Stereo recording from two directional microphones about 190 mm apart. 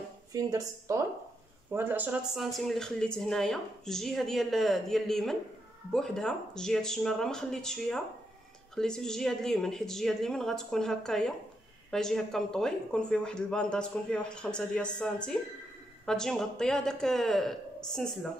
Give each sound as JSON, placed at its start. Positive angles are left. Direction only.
{"t": 0.3, "sound": "a woman's voice", "side_deg": -15}